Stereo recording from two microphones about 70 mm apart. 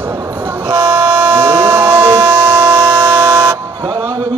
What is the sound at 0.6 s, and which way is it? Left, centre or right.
Train, right.